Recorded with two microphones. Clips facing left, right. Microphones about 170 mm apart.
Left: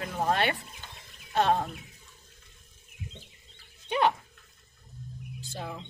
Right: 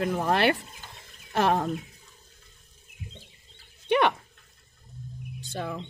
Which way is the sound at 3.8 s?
75° right (ahead or behind).